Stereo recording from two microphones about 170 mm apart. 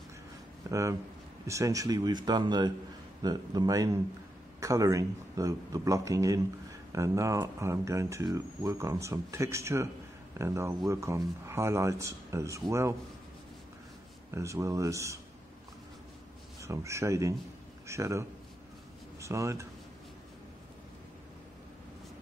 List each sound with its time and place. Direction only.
0.7 s a man's voice: 20° right (ahead or behind)
14.3 s speech: 15° right (ahead or behind)
16.6 s speech: 15° right (ahead or behind)